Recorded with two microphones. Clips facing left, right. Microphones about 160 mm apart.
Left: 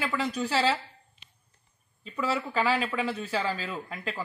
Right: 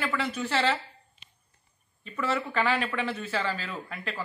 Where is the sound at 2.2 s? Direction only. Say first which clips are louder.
Even; 10° left (ahead or behind).